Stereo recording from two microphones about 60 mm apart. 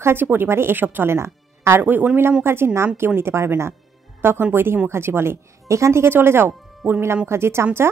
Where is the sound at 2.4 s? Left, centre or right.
Right.